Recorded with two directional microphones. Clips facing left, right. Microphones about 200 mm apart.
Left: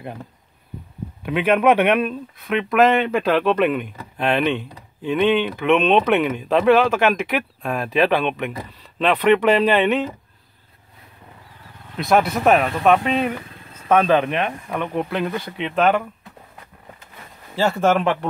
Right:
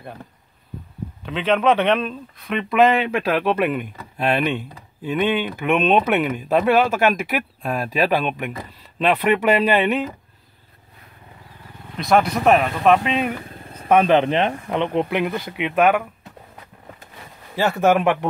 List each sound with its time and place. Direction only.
1.2 s speech: 10° left (ahead or behind); by 10.0 s 5° right (ahead or behind)
12.0 s speech: centre (ahead or behind)
13.8 s speech: 10° right (ahead or behind)
14.1 s speech: 30° right (ahead or behind); by 16.0 s 10° right (ahead or behind)
17.6 s speech: 10° right (ahead or behind)